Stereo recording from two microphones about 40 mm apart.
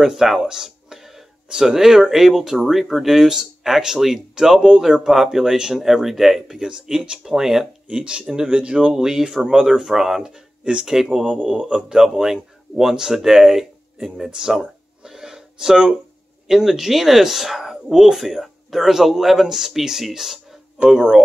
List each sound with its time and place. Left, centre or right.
0.0 s speech: centre
2.5 s speech: centre
6.4 s speech: centre
7.9 s speech: right
8.9 s speech: centre
10.6 s speech: right; by 20.3 s centre
20.7 s speech: centre